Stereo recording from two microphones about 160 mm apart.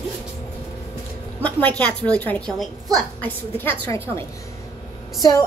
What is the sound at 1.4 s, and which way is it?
A woman's voice, 10° left (ahead or behind).